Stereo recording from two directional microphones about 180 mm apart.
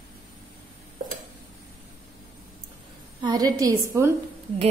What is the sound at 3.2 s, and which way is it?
Speech, 20° right (ahead or behind).